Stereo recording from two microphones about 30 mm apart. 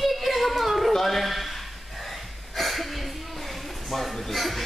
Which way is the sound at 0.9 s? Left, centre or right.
Centre.